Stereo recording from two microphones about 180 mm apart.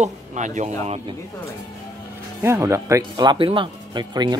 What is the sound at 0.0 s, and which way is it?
Speech, 40° right (ahead or behind).